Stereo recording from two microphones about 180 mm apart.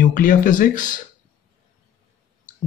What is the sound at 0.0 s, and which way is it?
Speech, 50° left (ahead or behind).